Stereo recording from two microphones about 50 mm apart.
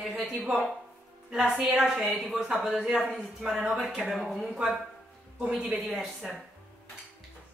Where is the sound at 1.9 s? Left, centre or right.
Centre.